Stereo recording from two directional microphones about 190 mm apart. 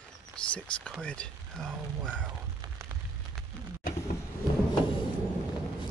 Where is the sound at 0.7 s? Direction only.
5° left (ahead or behind).